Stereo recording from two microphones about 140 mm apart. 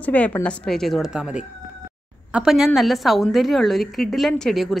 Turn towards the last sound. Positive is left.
turn(degrees=0)  # may be behind; listen again after turning